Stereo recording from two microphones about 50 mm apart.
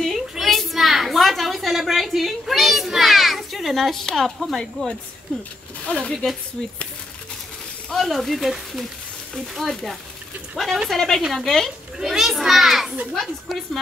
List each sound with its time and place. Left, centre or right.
0.0 s a sound: centre
5.9 s speech: centre
7.9 s speech: centre
12.0 s speech: centre